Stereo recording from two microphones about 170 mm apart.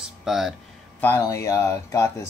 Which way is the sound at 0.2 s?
Centre (ahead or behind).